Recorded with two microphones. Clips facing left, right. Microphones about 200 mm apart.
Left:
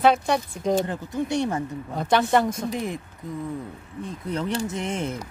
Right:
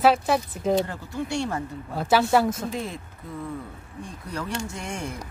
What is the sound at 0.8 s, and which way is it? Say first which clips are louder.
Speech: left 4 dB; 20° left (ahead or behind).